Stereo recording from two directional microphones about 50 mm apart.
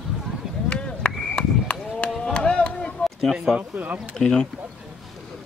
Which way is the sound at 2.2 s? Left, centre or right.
Centre.